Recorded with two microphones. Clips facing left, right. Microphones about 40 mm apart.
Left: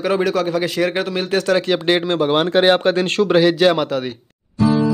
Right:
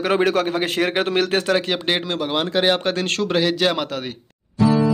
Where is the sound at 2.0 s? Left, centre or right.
Centre.